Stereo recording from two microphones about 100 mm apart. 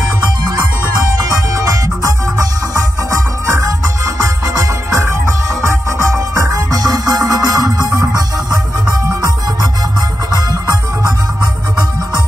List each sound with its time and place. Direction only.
1.3 s music: 35° right (ahead or behind)
10.3 s music: 40° right (ahead or behind)